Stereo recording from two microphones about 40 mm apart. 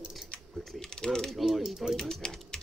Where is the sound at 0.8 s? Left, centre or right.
Centre.